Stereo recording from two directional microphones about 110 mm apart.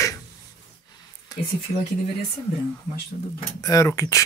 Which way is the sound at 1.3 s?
35° left (ahead or behind).